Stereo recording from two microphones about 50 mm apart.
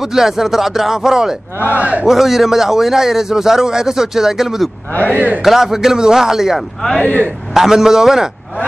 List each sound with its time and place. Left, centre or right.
0.0 s a man's voice: centre
1.7 s a man's voice: right
2.0 s a man's voice: centre
5.0 s a man's voice: right
5.4 s a man's voice: centre
7.0 s speech: left
7.5 s a man's voice: centre